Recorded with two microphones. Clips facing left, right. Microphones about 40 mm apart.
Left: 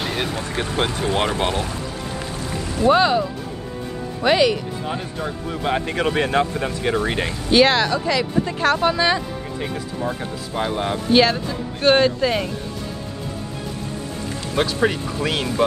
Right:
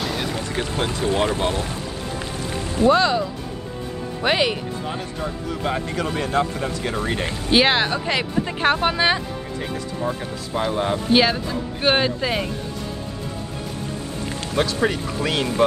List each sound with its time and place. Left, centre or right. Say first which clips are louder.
0.1 s speech: left 1 dB; left
2.2 s a sound: even; right
2.9 s speech: left 2 dB; centre
4.2 s speech: left 4 dB; centre
5.2 s speech: even; left
5.8 s speech: left 4 dB; left
7.5 s speech: left 2 dB; centre
10.0 s speech: even; centre
11.1 s speech: left 3 dB; centre
14.6 s speech: left 1 dB; centre